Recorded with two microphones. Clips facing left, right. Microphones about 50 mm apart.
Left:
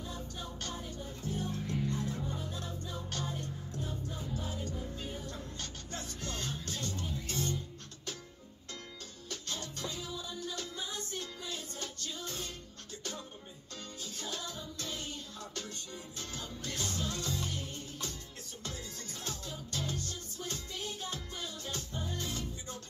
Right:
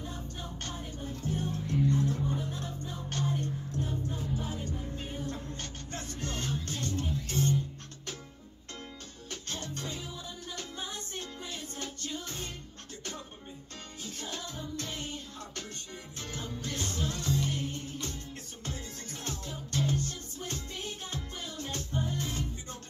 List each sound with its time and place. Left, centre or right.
0.0 s music: right
9.3 s music: right
14.0 s music: right
19.2 s music: right